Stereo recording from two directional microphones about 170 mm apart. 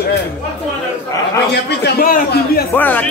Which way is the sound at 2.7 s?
10° left (ahead or behind).